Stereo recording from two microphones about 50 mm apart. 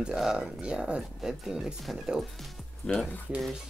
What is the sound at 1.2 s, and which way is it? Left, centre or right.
Speech, centre.